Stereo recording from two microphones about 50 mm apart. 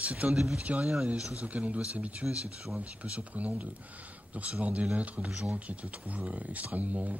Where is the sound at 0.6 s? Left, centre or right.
Right.